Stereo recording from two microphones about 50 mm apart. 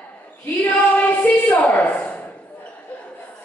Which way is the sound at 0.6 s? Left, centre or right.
Left.